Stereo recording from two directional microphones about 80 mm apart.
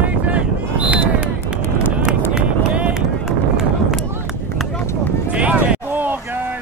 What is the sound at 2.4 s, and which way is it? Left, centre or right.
Run, centre.